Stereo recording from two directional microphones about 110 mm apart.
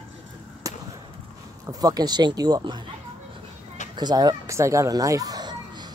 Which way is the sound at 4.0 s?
40° right (ahead or behind).